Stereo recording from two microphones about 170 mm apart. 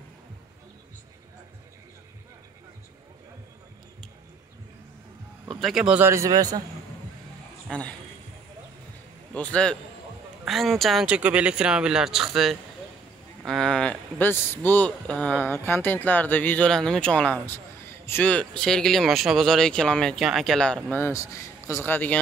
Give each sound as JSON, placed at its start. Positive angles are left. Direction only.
{"t": 5.6, "sound": "a man's voice", "side_deg": 0}
{"t": 7.6, "sound": "a man's voice", "side_deg": 5}
{"t": 9.3, "sound": "a man's voice", "side_deg": 5}